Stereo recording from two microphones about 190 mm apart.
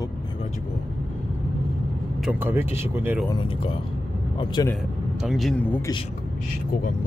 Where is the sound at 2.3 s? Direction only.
10° right (ahead or behind).